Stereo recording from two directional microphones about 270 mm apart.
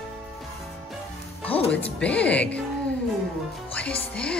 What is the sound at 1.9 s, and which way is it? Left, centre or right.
Speech, centre.